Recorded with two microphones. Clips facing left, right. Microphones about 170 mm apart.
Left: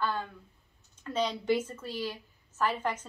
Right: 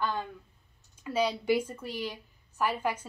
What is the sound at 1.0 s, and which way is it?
A woman's voice, 10° right (ahead or behind).